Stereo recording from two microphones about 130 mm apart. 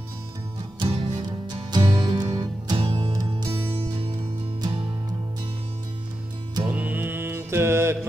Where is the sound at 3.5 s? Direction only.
45° right (ahead or behind).